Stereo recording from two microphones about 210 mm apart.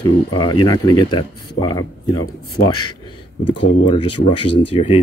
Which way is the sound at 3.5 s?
20° left (ahead or behind).